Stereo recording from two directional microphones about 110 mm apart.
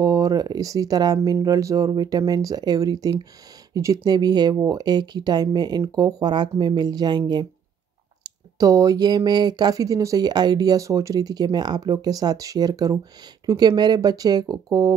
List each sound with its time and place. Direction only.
0.0 s speech: 35° right (ahead or behind)